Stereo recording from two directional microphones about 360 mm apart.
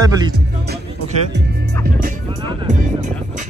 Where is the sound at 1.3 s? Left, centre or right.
Right.